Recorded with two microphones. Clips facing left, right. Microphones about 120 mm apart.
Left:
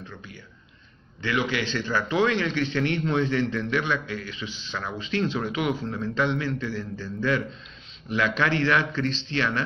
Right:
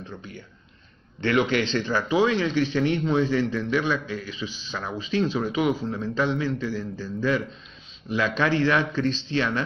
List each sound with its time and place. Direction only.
1.2 s a man's voice: 35° right (ahead or behind)
1.7 s a man's voice: 15° right (ahead or behind)